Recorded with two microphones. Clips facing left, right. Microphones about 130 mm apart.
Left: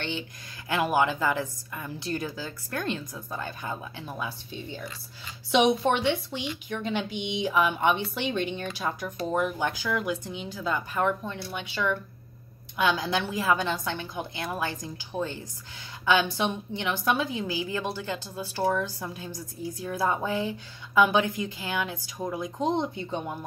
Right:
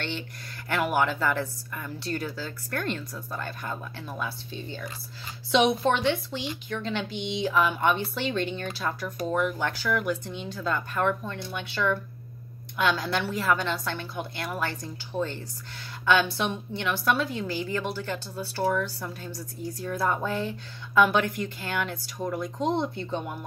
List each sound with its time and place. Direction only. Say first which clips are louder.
0.7 s a woman's voice: left 1 dB; 15° left (ahead or behind)